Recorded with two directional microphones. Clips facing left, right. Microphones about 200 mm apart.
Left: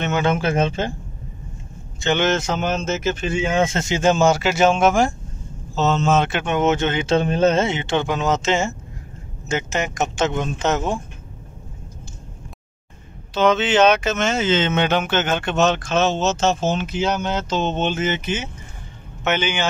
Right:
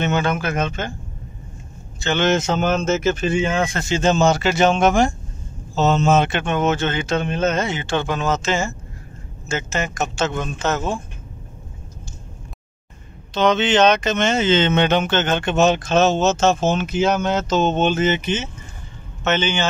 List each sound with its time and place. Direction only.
0.2 s a man's voice: 25° left (ahead or behind)
2.0 s a man's voice: 15° left (ahead or behind)
2.3 s speech: 25° right (ahead or behind)
2.6 s speech: 50° right (ahead or behind)
3.4 s a man's voice: 20° left (ahead or behind)
4.0 s speech: 10° left (ahead or behind)
5.8 s a man's voice: 10° right (ahead or behind)
6.4 s a man's voice: 20° left (ahead or behind)
7.2 s a man's voice: 35° left (ahead or behind); by 11.0 s 20° left (ahead or behind)
13.3 s speech: 5° left (ahead or behind)
15.5 s a man's voice: 10° right (ahead or behind)
15.9 s speech: 40° right (ahead or behind)
18.2 s speech: 10° left (ahead or behind)